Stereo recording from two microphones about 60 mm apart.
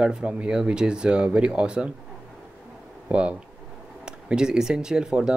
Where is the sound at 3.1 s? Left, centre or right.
Centre.